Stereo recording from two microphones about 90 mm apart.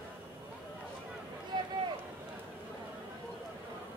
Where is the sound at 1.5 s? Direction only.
60° right (ahead or behind).